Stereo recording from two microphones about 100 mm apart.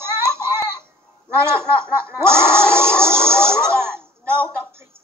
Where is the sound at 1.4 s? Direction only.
25° right (ahead or behind).